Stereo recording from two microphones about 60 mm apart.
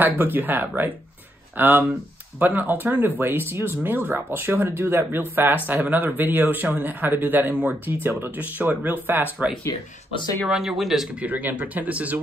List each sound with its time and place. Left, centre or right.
0.0 s speech: right
8.4 s speech: right
10.5 s speech: centre
11.1 s speech: right